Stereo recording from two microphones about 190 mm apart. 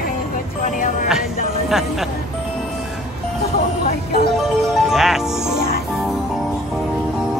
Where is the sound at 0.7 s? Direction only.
45° left (ahead or behind).